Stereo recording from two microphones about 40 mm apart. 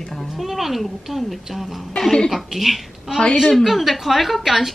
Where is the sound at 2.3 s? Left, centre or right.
Centre.